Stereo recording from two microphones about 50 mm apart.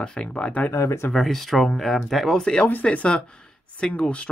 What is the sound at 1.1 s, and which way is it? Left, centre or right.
Speech, centre.